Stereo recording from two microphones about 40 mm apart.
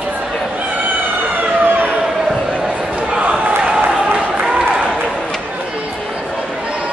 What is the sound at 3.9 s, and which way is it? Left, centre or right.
Applause, centre.